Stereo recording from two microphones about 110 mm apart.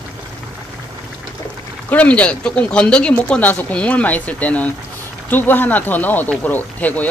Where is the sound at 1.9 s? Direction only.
15° left (ahead or behind).